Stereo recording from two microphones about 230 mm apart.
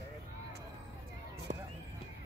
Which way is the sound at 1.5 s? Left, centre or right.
Right.